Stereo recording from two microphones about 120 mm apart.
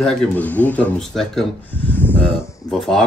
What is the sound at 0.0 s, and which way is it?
Speech, 5° left (ahead or behind).